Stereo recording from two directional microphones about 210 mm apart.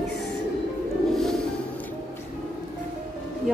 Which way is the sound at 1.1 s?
Centre (ahead or behind).